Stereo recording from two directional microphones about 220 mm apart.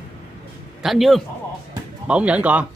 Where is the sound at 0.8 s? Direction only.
Centre (ahead or behind).